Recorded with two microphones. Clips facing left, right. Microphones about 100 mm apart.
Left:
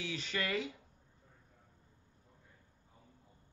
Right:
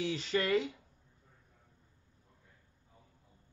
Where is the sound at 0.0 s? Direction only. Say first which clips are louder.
Right 6 dB; 35° right (ahead or behind).